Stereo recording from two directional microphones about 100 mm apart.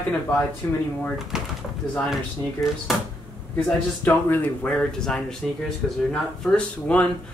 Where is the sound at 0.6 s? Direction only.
35° left (ahead or behind).